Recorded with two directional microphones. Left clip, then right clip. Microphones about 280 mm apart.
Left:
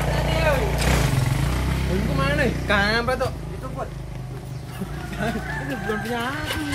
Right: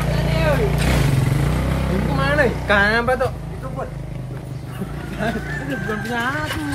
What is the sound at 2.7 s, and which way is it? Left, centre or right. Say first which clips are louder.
Speech: right 4 dB; centre.